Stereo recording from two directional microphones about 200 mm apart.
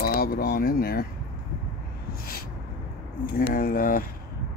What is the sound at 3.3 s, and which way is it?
Speech, 45° left (ahead or behind).